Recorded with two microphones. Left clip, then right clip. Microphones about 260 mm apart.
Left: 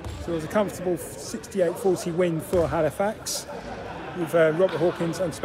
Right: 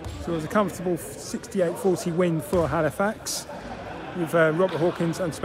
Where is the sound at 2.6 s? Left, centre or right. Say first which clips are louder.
Even; right.